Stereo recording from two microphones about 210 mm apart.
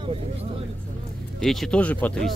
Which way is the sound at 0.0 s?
25° right (ahead or behind).